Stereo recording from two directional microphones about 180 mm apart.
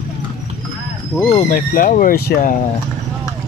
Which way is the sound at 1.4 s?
50° left (ahead or behind).